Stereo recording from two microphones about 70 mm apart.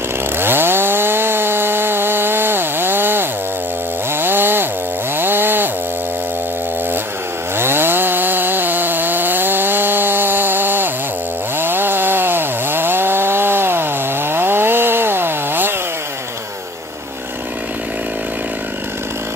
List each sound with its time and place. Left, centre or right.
0.4 s chainsaw: right
7.5 s chainsaw: right